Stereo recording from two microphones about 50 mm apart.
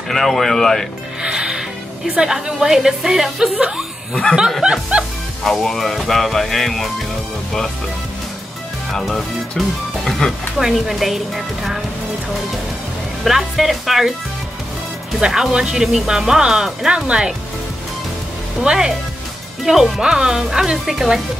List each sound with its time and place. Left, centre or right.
0.1 s speech: centre
1.2 s music: centre
2.1 s speech: centre
5.4 s speech: centre
9.0 s speech: centre
10.6 s speech: centre
13.2 s speech: centre
15.1 s speech: centre
18.6 s speech: centre